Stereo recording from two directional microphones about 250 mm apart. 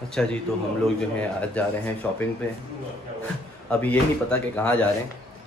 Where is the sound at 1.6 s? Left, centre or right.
Centre.